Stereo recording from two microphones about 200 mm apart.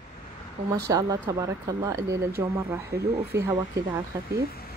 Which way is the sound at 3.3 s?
15° right (ahead or behind).